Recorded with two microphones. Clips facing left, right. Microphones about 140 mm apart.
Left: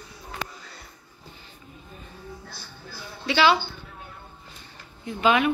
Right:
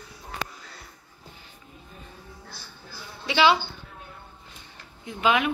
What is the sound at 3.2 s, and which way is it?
Speech, 20° right (ahead or behind).